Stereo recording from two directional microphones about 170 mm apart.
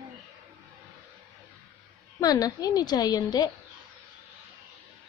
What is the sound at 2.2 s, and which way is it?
A woman's voice, 20° left (ahead or behind).